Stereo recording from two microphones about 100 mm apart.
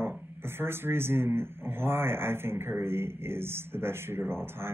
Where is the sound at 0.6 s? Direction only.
25° right (ahead or behind).